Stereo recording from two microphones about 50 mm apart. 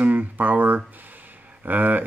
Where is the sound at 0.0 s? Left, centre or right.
Right.